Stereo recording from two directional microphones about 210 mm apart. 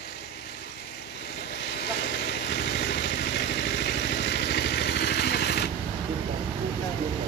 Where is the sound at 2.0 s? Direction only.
50° left (ahead or behind).